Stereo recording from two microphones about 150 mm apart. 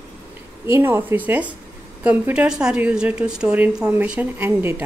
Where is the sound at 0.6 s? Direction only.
15° right (ahead or behind).